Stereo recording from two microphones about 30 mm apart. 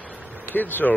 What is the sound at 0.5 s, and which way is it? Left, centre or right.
Speech, left.